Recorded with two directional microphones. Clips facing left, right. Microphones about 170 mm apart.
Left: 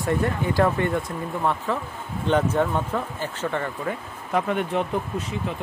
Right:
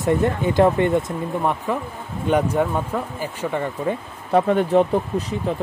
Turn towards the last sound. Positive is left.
turn(degrees=-35)  # may be behind; listen again after turning